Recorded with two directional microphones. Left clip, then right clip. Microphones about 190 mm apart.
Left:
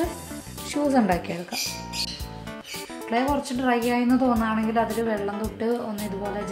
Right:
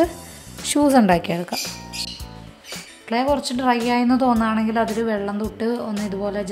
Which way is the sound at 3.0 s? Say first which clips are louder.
Right 4 dB; 40° right (ahead or behind).